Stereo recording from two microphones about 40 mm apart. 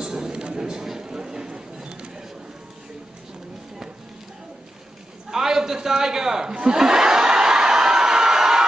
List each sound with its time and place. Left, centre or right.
0.0 s a sound: centre
5.3 s a man's voice: centre
6.7 s snicker: centre